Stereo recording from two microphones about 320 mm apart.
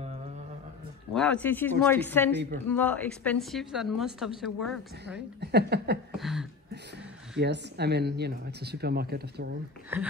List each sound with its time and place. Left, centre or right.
1.1 s a woman's voice: centre
5.0 s speech: right
6.1 s a sound: centre
7.3 s speech: right